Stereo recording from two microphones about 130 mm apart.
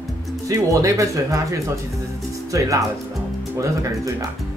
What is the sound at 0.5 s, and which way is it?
Speech, 25° right (ahead or behind).